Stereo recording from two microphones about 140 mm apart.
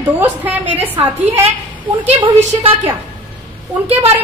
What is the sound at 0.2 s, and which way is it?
A woman's voice, 10° right (ahead or behind).